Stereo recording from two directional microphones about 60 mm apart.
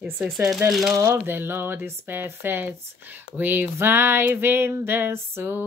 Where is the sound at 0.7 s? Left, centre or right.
Centre.